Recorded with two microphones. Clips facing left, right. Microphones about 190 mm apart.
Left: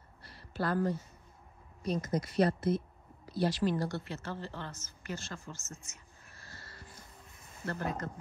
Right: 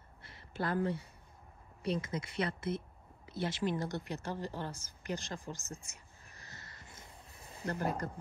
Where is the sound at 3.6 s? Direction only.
20° right (ahead or behind).